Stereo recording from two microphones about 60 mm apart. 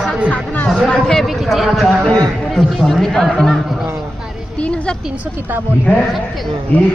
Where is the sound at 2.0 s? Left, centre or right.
Centre.